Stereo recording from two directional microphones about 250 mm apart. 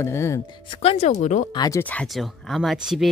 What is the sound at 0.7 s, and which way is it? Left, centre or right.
Speech, left.